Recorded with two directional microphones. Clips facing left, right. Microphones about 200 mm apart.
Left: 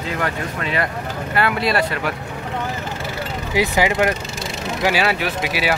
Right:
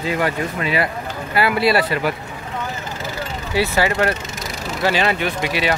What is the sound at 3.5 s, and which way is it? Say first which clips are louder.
Speech: even; 15° left (ahead or behind).